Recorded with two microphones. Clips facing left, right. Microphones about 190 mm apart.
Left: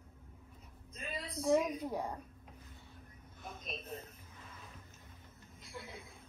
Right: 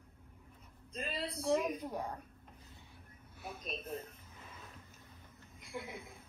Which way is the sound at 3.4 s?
10° right (ahead or behind).